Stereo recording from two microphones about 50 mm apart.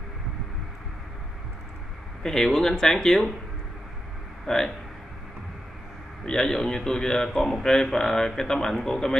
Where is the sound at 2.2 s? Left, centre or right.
Centre.